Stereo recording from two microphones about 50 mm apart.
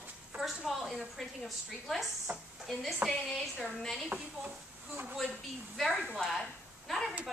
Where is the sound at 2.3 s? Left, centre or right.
Right.